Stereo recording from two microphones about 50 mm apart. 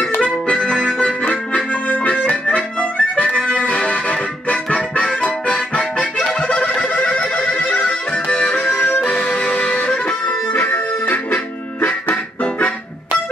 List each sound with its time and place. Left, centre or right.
0.2 s music: left
7.3 s neigh: left
8.1 s music: left
8.7 s music: left